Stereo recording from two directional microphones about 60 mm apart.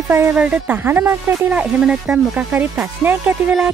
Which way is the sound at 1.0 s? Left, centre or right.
Right.